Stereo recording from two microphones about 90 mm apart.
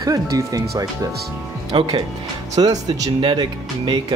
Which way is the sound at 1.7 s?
70° right (ahead or behind).